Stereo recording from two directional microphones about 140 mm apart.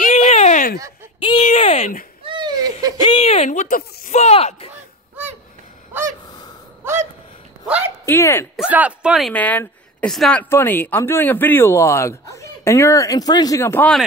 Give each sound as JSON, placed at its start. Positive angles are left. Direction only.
{"t": 0.0, "sound": "a sound", "side_deg": 60}
{"t": 1.4, "sound": "speech", "side_deg": 55}
{"t": 2.2, "sound": "a sound", "side_deg": -35}
{"t": 3.0, "sound": "speech", "side_deg": 40}
{"t": 4.2, "sound": "speech", "side_deg": 50}
{"t": 6.8, "sound": "gasp", "side_deg": -15}
{"t": 7.6, "sound": "a sound", "side_deg": -10}
{"t": 8.0, "sound": "speech", "side_deg": 20}
{"t": 8.5, "sound": "speech", "side_deg": -10}
{"t": 9.3, "sound": "speech", "side_deg": 10}
{"t": 10.5, "sound": "speech", "side_deg": 15}